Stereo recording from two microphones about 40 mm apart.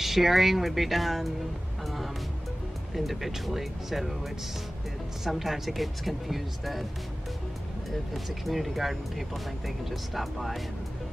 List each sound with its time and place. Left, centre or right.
0.0 s speech: centre
2.9 s speech: centre
5.2 s speech: centre
8.1 s speech: centre